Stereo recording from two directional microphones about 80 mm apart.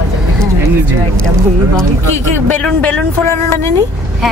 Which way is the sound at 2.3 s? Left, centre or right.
Left.